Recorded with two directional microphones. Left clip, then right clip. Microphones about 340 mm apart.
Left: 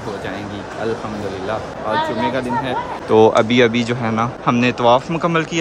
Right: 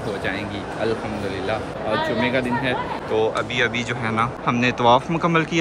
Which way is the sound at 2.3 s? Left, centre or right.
Centre.